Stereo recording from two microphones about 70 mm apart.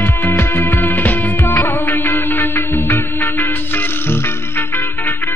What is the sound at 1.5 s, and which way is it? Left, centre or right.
Music of bollywood, left.